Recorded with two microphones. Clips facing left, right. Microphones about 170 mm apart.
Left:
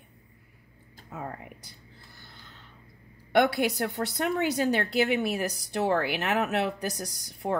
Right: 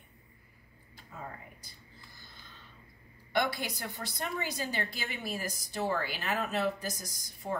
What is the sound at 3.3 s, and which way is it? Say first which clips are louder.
A woman's voice: left 9 dB; 65° left (ahead or behind).